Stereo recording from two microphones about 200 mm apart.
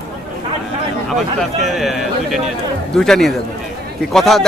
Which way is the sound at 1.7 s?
Centre (ahead or behind).